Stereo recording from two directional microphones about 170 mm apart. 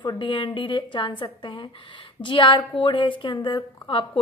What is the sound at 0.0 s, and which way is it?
A woman's voice, 30° left (ahead or behind).